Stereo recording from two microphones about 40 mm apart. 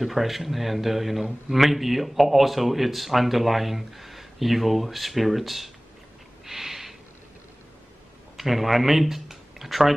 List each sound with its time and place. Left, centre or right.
0.0 s a man's voice: centre
6.4 s snort: centre
8.4 s speech: centre